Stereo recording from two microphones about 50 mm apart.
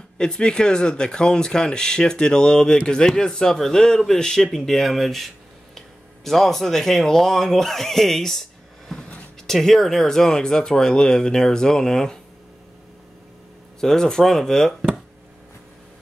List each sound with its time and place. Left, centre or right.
0.2 s speech: centre
13.7 s speech: centre